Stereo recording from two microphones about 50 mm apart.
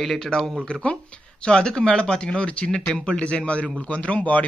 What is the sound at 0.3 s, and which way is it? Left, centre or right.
Speech, centre.